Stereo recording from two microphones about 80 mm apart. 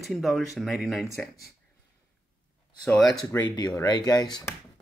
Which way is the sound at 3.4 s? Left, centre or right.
Left.